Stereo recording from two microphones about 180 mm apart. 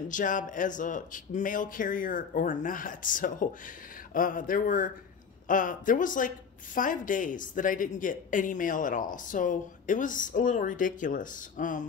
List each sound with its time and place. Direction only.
0.1 s speech: 45° left (ahead or behind)